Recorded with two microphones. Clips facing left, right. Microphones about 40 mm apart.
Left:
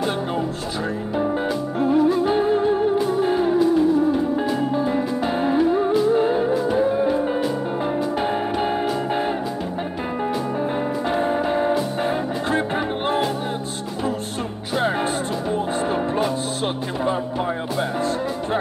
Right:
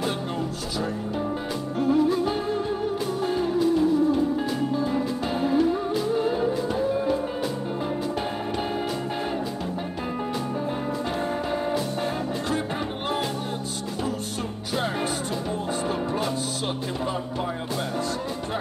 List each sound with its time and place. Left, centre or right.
1.8 s music: left
2.0 s music: centre
2.3 s music: left
3.5 s music: centre
4.7 s music: left
11.1 s music: left